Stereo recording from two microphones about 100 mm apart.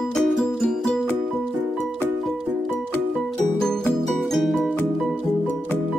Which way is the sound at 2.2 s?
Centre (ahead or behind).